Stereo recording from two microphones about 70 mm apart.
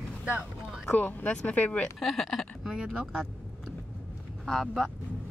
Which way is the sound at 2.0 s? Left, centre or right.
Centre.